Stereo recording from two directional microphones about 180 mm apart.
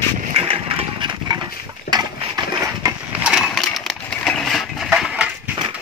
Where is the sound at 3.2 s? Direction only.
Centre (ahead or behind).